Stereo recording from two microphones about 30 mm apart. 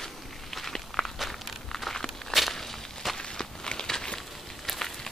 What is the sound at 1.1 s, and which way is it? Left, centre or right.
Walk, centre.